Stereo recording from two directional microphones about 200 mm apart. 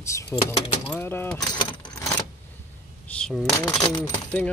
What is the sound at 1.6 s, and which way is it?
Keys jangling, 15° left (ahead or behind).